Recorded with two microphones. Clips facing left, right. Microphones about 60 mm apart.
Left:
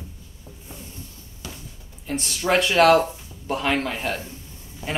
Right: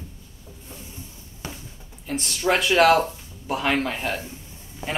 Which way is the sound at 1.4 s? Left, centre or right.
Right.